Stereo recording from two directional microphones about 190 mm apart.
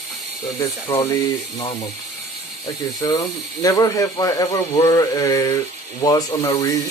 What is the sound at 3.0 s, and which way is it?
Speech, 15° left (ahead or behind).